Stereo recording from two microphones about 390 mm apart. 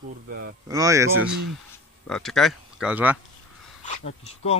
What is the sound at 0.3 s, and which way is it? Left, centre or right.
Speech, right.